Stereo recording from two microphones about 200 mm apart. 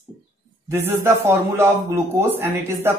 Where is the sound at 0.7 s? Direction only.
10° right (ahead or behind).